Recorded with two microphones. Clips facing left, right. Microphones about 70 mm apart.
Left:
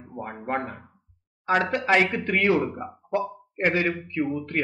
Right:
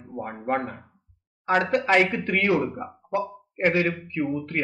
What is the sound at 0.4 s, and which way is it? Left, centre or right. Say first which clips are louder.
Speech: right 2 dB; centre.